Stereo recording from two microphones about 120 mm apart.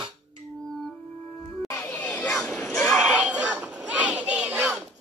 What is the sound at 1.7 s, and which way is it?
Chatter, 15° left (ahead or behind).